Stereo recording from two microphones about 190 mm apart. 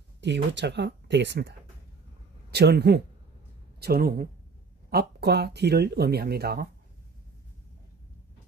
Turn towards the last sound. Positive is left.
turn(degrees=-55)  # may be behind; listen again after turning